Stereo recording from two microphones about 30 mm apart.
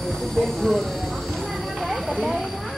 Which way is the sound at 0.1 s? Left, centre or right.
Centre.